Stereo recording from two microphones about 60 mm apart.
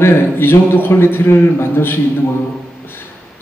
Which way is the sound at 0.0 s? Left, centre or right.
Left.